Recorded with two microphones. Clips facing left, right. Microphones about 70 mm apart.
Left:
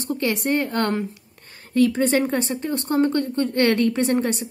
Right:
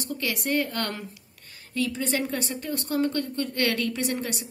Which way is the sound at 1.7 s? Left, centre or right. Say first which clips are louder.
Left 9 dB; left.